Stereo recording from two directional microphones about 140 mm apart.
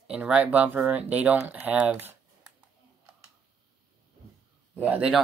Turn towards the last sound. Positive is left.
turn(degrees=-10)  # may be behind; listen again after turning